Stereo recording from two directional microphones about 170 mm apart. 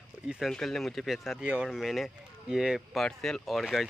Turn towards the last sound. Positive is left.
turn(degrees=0)  # may be behind; listen again after turning